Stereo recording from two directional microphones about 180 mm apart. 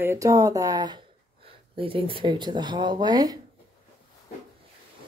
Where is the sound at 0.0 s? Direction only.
15° right (ahead or behind).